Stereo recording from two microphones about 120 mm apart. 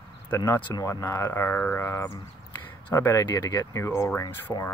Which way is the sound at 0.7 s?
30° left (ahead or behind).